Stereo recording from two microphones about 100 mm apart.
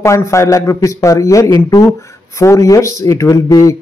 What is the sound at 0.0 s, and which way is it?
Speech, 30° left (ahead or behind).